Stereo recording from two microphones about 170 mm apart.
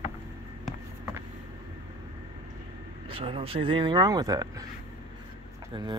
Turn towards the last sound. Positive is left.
turn(degrees=-25)  # may be behind; listen again after turning